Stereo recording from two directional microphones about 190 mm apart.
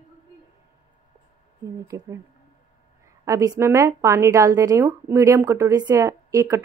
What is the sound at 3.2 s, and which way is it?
Speech, 15° right (ahead or behind).